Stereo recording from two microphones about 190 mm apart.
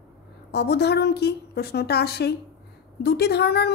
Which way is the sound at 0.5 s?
60° left (ahead or behind).